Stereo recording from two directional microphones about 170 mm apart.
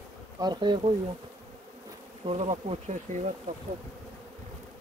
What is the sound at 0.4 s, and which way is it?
Speech, 25° right (ahead or behind).